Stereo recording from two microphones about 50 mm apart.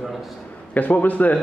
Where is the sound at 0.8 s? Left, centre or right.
Left.